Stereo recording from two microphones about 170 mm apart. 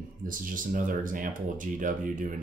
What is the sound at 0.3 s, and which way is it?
Speech, 50° right (ahead or behind).